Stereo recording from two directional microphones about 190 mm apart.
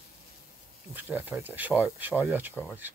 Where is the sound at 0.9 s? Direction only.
10° right (ahead or behind).